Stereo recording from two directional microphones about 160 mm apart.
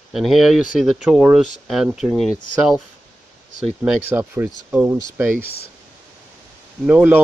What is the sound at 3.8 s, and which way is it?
Speech, 15° right (ahead or behind).